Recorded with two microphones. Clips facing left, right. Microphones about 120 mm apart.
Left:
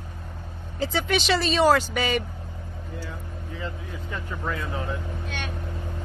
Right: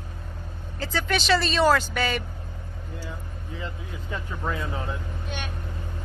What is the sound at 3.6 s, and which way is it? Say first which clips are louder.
Vehicle: left 2 dB; 20° right (ahead or behind).